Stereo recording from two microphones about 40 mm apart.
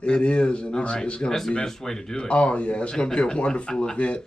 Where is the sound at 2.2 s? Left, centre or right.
Left.